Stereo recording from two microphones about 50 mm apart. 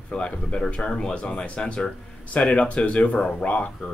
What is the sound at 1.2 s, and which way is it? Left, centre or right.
Speech, left.